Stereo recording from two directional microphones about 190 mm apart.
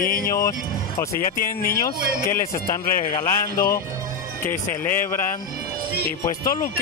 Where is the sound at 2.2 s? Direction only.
15° left (ahead or behind).